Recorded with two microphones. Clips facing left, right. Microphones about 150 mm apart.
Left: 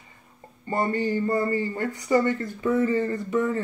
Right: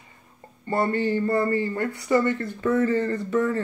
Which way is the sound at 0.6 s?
15° left (ahead or behind).